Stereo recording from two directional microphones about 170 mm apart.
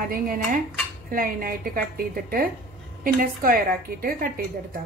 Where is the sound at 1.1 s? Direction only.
55° right (ahead or behind).